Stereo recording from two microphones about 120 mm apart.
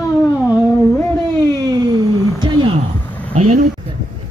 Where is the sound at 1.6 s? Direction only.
35° right (ahead or behind).